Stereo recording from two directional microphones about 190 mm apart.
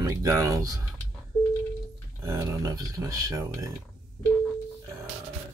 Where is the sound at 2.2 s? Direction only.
15° right (ahead or behind).